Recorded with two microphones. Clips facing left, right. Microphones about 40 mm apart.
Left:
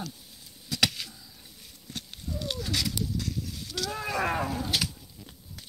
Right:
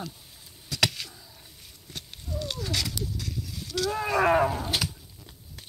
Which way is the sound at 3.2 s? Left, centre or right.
Right.